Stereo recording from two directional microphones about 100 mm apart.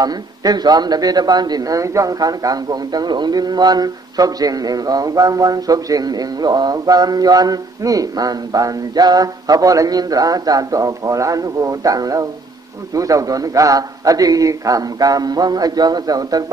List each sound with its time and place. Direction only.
0.0 s speech: 40° right (ahead or behind)